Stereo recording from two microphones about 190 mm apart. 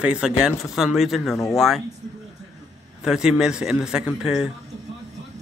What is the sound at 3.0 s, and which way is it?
A man's voice, 5° right (ahead or behind).